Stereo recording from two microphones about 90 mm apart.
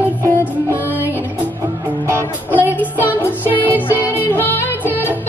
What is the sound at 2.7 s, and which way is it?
Music, 20° left (ahead or behind).